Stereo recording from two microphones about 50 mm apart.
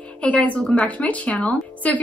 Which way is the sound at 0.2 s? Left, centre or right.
Left.